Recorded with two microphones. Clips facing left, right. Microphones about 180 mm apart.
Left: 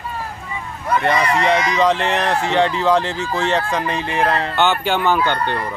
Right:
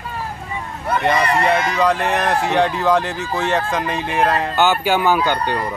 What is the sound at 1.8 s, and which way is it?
Speech, 10° right (ahead or behind).